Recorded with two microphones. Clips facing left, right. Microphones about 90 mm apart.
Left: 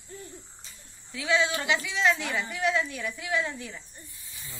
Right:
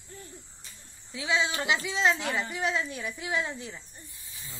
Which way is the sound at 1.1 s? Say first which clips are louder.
Left 2 dB; 25° right (ahead or behind).